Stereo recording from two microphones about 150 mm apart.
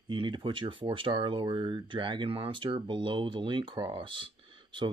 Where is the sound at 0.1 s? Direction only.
30° right (ahead or behind).